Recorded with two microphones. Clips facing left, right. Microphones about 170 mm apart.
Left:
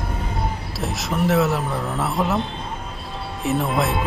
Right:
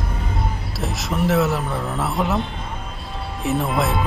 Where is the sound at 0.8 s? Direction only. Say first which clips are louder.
Even; centre (ahead or behind).